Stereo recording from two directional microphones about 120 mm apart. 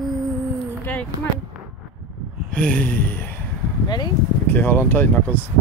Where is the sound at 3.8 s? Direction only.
35° left (ahead or behind).